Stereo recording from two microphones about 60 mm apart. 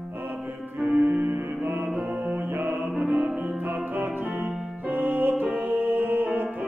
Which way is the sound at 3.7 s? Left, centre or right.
Right.